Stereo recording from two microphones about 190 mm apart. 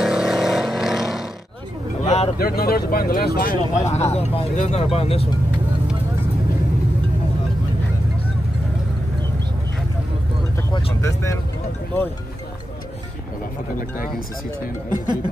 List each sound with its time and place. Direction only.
0.0 s vehicle: 5° right (ahead or behind)
2.0 s vehicle: 35° left (ahead or behind)
2.3 s speech: 55° left (ahead or behind)
3.7 s speech: 35° left (ahead or behind)
11.0 s vehicle: 15° left (ahead or behind)
13.7 s speech: 50° left (ahead or behind)